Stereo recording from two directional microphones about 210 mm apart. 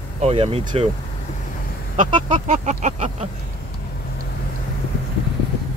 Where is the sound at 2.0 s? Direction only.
35° right (ahead or behind).